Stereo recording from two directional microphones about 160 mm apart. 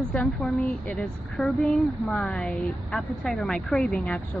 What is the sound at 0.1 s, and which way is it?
A woman's voice, 5° left (ahead or behind).